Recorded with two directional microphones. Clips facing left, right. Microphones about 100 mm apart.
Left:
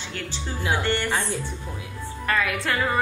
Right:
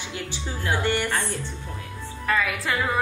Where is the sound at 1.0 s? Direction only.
15° left (ahead or behind).